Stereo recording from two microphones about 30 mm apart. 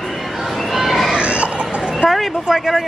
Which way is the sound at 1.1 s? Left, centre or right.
Right.